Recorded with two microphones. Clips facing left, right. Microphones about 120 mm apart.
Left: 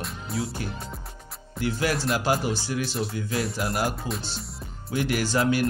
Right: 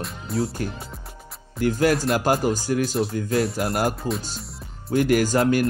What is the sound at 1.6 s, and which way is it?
Speech, 45° right (ahead or behind).